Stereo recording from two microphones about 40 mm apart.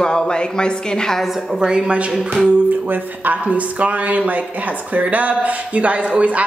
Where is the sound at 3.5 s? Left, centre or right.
Right.